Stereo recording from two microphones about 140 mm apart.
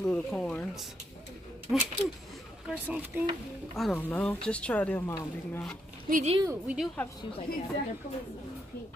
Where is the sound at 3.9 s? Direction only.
10° left (ahead or behind).